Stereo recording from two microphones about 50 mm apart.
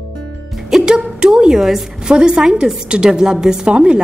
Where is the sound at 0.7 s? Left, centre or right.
Centre.